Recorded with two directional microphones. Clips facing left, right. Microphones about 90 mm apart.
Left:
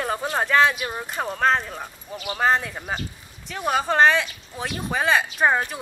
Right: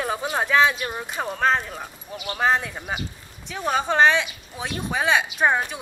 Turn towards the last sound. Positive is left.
turn(degrees=0)  # may be behind; listen again after turning